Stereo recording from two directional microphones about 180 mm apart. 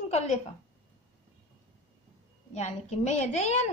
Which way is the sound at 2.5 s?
40° left (ahead or behind).